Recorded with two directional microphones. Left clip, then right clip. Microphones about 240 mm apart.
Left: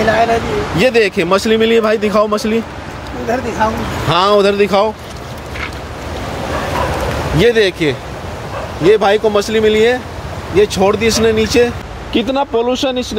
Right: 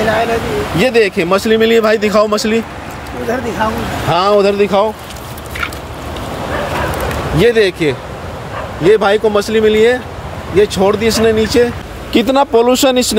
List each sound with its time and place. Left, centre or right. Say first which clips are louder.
0.1 s speech: left 1 dB; centre
3.6 s speech: even; centre
7.3 s speech: right 1 dB; centre
12.1 s speech: right 4 dB; centre